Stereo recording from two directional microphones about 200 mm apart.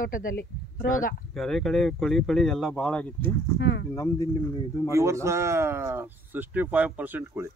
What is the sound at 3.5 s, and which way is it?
Speech, 60° left (ahead or behind).